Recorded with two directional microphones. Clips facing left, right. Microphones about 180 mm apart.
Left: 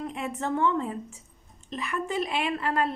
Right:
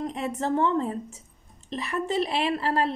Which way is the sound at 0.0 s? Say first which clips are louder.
Right 3 dB; 35° right (ahead or behind).